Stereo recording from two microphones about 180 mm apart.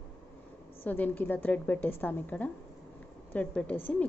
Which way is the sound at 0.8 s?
10° left (ahead or behind).